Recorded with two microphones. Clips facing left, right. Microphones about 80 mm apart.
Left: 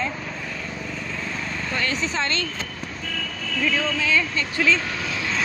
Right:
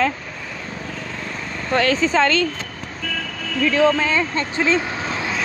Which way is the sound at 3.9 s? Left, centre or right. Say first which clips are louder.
Right 3 dB; right.